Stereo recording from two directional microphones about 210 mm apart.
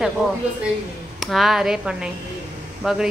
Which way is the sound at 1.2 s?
Centre (ahead or behind).